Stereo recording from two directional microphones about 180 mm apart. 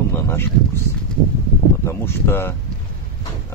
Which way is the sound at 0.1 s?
15° left (ahead or behind).